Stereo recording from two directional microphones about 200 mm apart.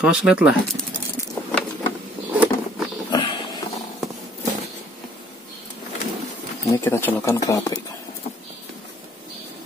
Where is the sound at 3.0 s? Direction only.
25° left (ahead or behind).